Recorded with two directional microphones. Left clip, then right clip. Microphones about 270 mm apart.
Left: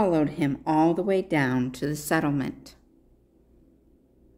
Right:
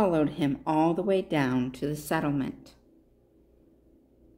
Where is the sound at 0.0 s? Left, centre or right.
Centre.